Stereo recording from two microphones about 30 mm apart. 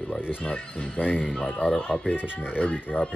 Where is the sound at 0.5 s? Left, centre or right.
Left.